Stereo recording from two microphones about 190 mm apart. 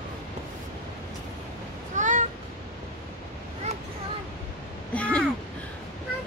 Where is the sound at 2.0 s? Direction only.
40° right (ahead or behind).